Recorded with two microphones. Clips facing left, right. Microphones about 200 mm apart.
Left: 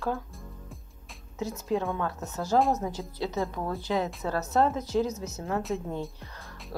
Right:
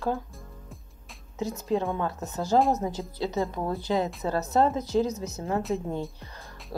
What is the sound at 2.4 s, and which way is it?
A woman's voice, centre (ahead or behind).